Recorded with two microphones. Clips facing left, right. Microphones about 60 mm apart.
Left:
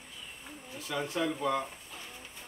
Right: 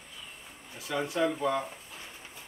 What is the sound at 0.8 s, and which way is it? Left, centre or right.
Speech, centre.